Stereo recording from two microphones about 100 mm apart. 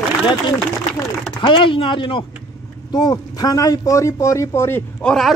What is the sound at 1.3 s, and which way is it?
Speech, 55° left (ahead or behind).